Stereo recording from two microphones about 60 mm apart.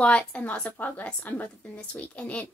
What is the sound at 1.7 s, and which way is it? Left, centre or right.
Speech, left.